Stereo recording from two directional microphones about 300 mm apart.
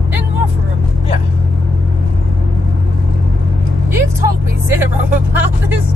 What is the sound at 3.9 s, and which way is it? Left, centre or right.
Vehicle, centre.